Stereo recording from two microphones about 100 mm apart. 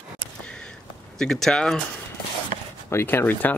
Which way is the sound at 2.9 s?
25° left (ahead or behind).